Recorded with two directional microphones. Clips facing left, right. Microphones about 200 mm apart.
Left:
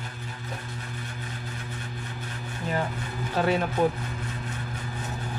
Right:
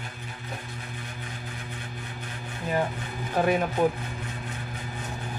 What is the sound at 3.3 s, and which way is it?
Speech, 20° right (ahead or behind).